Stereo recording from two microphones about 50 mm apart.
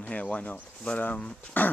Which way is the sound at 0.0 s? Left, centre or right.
Left.